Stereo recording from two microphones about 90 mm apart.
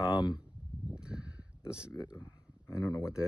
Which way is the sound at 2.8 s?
25° left (ahead or behind).